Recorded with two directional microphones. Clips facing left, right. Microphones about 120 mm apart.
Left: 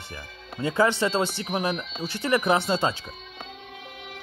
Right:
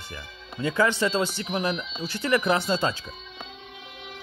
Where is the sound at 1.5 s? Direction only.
50° left (ahead or behind).